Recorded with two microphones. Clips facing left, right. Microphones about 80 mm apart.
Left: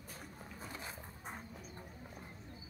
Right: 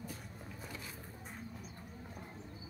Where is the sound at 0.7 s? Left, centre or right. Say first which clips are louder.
Left 2 dB; left.